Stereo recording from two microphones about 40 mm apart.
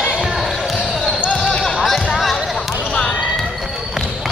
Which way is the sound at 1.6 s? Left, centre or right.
Centre.